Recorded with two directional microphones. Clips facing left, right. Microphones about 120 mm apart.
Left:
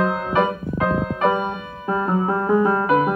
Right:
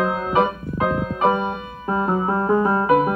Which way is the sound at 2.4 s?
25° right (ahead or behind).